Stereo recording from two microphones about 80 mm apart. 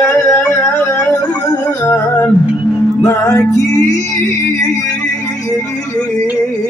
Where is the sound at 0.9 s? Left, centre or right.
Left.